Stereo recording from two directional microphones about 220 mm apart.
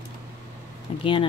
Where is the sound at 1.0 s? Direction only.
25° left (ahead or behind).